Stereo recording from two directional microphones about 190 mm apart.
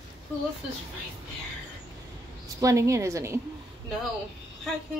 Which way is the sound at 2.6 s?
15° right (ahead or behind).